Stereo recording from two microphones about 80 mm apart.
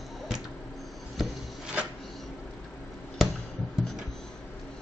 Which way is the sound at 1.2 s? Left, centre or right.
Centre.